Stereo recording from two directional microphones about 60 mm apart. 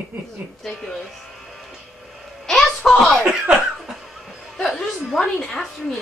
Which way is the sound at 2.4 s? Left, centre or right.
Centre.